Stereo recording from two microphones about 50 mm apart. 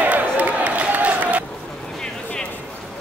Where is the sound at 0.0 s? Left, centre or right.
Right.